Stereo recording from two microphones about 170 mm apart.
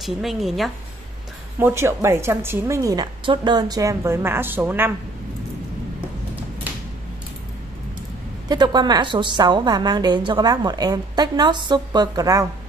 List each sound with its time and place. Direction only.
0.0 s a woman's voice: centre (ahead or behind)
1.6 s a woman's voice: 15° right (ahead or behind)
8.5 s a woman's voice: 25° right (ahead or behind)